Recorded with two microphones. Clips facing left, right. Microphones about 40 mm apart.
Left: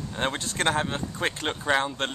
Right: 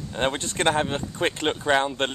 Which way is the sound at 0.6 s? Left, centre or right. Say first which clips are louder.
Right 3 dB; right.